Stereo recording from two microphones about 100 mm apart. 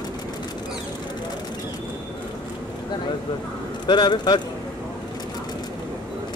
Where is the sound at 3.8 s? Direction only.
45° left (ahead or behind).